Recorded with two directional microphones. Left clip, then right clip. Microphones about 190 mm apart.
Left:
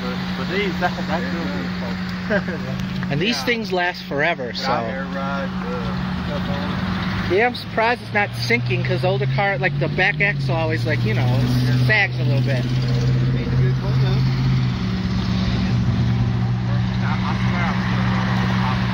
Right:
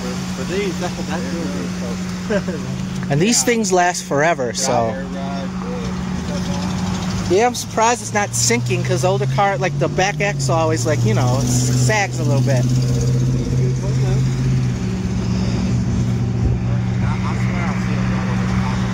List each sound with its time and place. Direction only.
3.1 s speech: 35° right (ahead or behind)
7.3 s speech: 15° right (ahead or behind)